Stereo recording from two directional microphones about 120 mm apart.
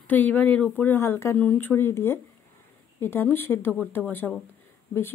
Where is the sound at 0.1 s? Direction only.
15° left (ahead or behind).